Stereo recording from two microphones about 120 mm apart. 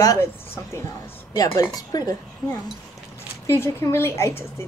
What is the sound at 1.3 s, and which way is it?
Speech, 30° left (ahead or behind).